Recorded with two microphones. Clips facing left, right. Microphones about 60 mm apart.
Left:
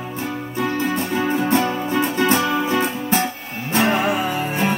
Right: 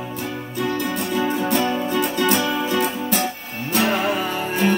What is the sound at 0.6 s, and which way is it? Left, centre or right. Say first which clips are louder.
Music: left 2 dB; left.